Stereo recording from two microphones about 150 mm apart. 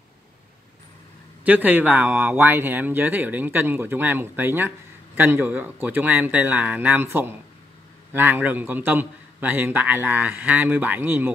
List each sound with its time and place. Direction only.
1.4 s speech: 10° right (ahead or behind)